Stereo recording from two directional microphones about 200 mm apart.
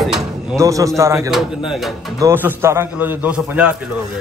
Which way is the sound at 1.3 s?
Centre (ahead or behind).